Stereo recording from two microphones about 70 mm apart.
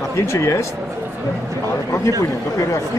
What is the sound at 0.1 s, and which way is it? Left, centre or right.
Speech, left.